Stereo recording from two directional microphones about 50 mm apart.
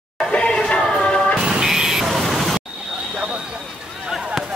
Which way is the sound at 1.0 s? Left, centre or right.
Left.